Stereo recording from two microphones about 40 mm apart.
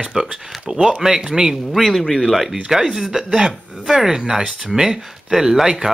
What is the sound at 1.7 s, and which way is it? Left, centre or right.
Speech, centre.